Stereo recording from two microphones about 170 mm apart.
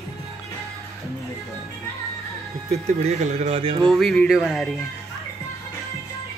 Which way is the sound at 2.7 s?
40° right (ahead or behind).